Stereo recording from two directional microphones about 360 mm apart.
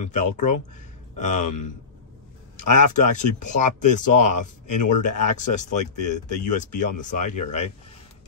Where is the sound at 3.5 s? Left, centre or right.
Centre.